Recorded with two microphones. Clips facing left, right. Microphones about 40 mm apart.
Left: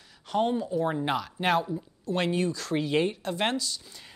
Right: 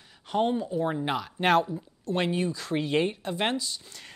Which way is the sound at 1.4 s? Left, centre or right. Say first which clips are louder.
Right 4 dB; right.